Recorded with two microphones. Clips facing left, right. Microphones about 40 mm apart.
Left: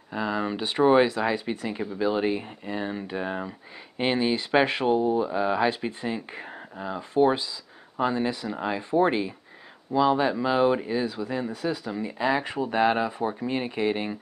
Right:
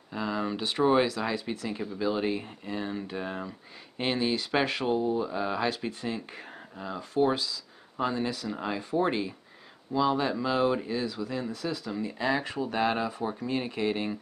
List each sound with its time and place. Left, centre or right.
0.1 s speech: centre